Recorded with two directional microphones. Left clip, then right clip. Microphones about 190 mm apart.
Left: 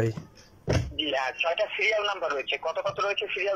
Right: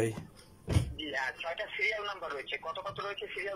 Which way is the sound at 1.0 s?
10° left (ahead or behind).